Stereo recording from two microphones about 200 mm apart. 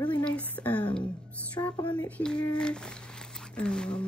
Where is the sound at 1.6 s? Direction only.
20° left (ahead or behind).